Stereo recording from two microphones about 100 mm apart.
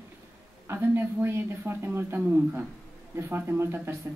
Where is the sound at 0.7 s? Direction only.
25° right (ahead or behind).